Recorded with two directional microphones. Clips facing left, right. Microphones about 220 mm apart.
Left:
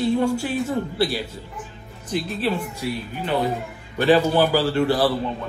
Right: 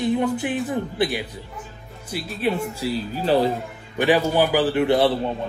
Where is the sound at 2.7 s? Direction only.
30° right (ahead or behind).